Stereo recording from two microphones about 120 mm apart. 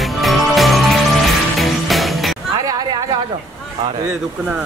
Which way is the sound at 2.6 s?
35° right (ahead or behind).